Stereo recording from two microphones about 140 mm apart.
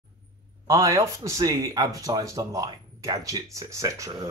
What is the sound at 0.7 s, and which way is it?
Speech, 25° right (ahead or behind).